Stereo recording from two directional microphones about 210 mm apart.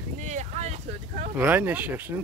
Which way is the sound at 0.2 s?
35° right (ahead or behind).